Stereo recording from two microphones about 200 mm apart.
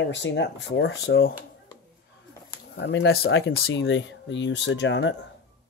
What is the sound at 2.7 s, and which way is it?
A child's voice, 60° left (ahead or behind).